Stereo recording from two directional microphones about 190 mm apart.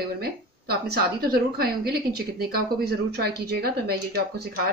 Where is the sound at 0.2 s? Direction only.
55° right (ahead or behind).